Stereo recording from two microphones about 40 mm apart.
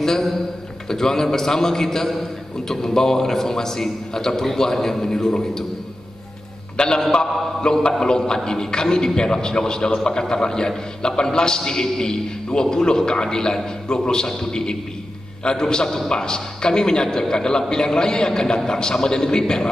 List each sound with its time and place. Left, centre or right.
0.8 s a man's voice: centre
7.0 s a man's voice: centre